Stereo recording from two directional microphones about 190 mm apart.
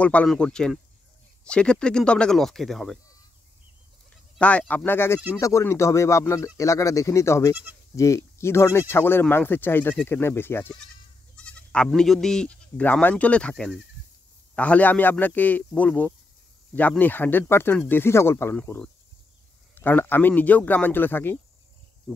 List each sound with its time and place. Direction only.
0.0 s speech: 5° left (ahead or behind)
4.4 s speech: 5° left (ahead or behind)